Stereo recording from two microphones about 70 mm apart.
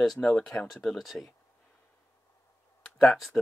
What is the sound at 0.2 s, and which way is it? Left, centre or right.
Speech, centre.